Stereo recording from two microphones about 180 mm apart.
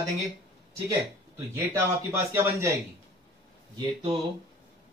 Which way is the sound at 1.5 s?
15° right (ahead or behind).